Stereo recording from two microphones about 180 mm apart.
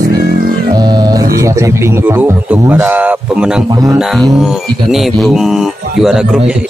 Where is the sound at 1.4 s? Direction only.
15° right (ahead or behind).